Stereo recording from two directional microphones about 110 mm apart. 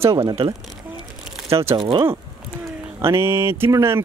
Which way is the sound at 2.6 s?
25° right (ahead or behind).